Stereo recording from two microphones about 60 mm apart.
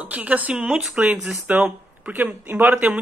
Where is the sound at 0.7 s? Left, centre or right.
Centre.